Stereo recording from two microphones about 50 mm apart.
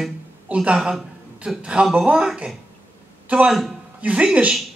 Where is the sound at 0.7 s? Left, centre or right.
Centre.